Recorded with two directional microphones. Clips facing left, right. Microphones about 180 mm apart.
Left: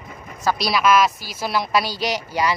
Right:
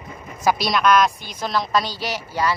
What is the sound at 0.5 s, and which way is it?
Speech, centre (ahead or behind).